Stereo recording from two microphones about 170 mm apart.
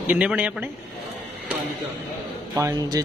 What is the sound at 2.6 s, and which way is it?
Speech, 20° right (ahead or behind).